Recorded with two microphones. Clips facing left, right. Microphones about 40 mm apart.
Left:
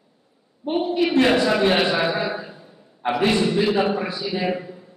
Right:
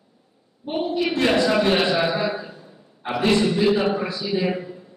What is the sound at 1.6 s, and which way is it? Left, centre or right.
A man's voice, centre.